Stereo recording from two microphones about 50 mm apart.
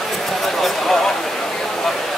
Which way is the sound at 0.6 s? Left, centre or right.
Centre.